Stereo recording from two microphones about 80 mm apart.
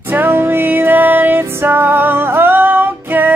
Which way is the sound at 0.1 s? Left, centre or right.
Right.